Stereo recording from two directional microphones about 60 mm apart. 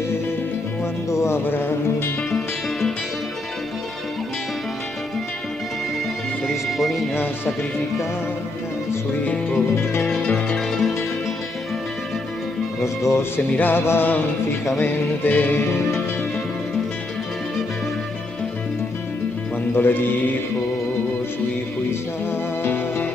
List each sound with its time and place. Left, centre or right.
1.1 s music: left
1.4 s music: left
6.4 s music: centre
9.2 s music: left
10.3 s music: centre
12.8 s speech: left
13.5 s music: left
13.7 s speech: left
14.8 s music: left
19.7 s music: left
22.3 s music: left